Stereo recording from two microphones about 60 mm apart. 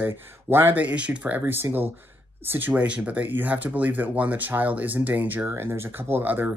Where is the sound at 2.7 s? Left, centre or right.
Right.